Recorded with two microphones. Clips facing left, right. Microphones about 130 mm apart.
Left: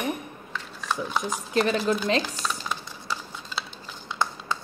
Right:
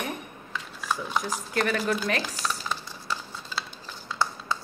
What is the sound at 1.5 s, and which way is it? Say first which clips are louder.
Speech: left 3 dB; 25° left (ahead or behind).